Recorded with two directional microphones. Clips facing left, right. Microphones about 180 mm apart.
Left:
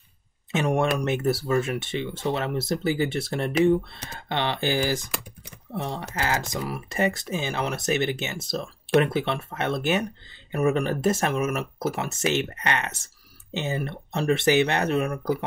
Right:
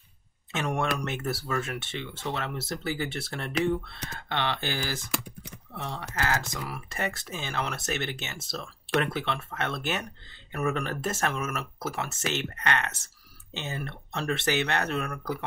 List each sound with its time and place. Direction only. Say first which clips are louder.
0.5 s speech: left 6 dB; 15° left (ahead or behind)